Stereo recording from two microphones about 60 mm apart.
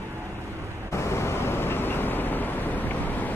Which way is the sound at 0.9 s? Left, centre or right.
Left.